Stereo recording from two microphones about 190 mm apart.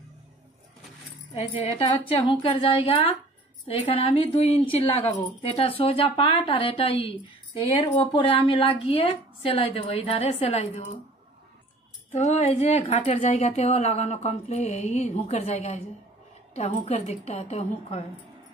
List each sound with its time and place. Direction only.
1.3 s a woman's voice: 30° left (ahead or behind)
12.1 s a woman's voice: 35° left (ahead or behind)